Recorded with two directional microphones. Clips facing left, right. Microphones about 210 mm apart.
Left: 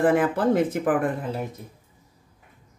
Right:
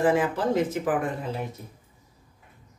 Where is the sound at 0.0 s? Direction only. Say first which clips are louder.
Left 3 dB; 55° left (ahead or behind).